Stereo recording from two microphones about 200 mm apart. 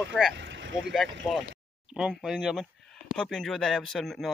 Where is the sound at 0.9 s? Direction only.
Centre (ahead or behind).